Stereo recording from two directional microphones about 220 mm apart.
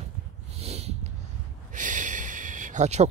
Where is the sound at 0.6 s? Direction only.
30° right (ahead or behind).